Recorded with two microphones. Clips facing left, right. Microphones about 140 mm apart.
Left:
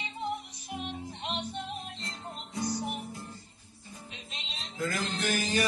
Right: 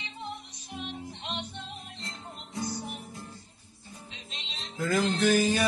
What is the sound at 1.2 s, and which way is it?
Music, 10° left (ahead or behind).